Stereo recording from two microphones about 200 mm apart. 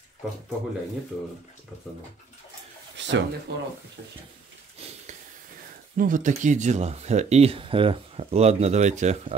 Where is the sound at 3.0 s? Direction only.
65° right (ahead or behind).